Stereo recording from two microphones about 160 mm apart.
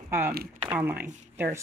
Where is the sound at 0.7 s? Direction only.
10° right (ahead or behind).